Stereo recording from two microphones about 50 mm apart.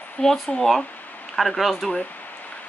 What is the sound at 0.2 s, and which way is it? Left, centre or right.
Speech, centre.